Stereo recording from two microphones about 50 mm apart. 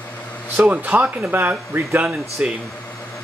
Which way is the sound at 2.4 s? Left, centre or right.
Right.